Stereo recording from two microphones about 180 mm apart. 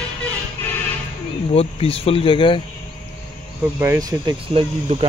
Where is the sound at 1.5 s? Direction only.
35° left (ahead or behind).